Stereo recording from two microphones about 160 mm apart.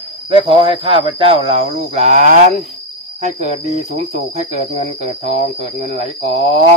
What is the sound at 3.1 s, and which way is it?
Cricket, 45° right (ahead or behind).